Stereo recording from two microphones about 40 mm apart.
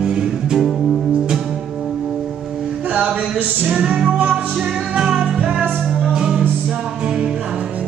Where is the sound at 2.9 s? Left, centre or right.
Right.